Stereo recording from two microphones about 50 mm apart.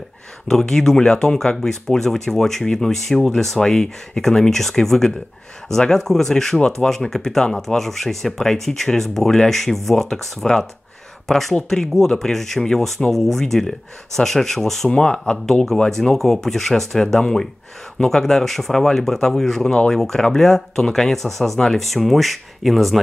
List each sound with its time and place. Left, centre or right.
0.5 s speech: centre
14.9 s speech: left
15.4 s speech: centre
21.8 s speech: centre